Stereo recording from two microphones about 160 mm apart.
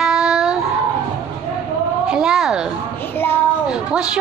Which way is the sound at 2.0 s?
5° right (ahead or behind).